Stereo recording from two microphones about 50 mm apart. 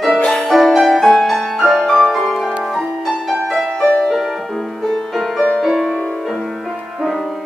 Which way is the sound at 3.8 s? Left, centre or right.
Centre.